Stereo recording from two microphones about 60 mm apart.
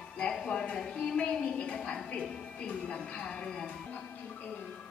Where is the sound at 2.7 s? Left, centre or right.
Centre.